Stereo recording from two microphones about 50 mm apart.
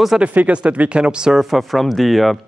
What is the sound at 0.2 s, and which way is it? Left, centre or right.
Speech, right.